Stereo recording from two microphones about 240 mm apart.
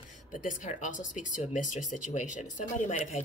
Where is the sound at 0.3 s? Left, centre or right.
Left.